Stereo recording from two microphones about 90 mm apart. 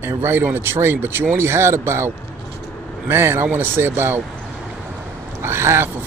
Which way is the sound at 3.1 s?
25° right (ahead or behind).